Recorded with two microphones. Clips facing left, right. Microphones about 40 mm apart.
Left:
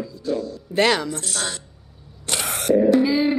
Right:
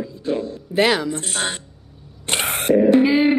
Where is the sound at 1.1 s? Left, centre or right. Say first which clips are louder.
Right 3 dB; right.